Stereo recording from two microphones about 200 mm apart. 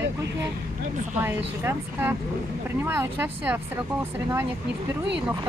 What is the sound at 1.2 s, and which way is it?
Speech, 10° right (ahead or behind).